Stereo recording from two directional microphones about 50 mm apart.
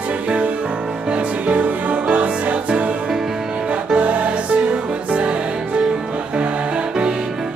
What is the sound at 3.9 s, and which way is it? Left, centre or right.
Music, right.